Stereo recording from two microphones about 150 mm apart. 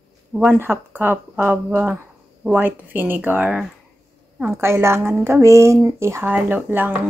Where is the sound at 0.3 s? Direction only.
10° right (ahead or behind).